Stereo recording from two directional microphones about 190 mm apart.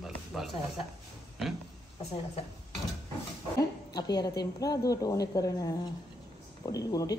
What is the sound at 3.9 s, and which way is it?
A woman's voice, 20° left (ahead or behind).